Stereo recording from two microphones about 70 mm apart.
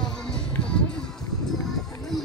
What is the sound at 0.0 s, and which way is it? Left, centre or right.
Music, centre.